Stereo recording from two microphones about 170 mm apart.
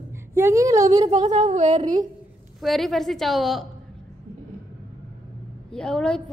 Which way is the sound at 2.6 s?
Centre (ahead or behind).